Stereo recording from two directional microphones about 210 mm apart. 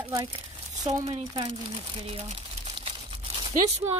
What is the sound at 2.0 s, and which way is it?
Crumpling, 30° right (ahead or behind).